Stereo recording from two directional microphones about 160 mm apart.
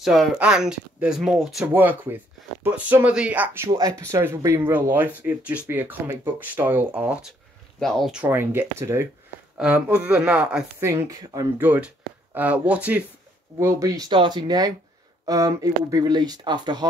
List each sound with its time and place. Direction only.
0.0 s speech: centre (ahead or behind)
10.9 s speech: 20° right (ahead or behind)